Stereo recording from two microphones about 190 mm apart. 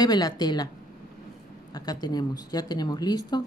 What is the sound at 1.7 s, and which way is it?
Speech, 20° left (ahead or behind).